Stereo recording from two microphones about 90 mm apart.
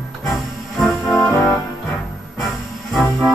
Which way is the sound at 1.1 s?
30° left (ahead or behind).